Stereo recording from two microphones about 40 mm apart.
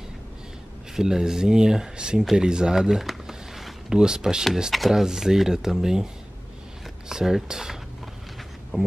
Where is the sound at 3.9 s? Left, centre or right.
Centre.